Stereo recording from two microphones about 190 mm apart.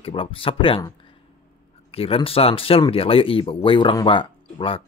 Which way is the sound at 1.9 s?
30° left (ahead or behind).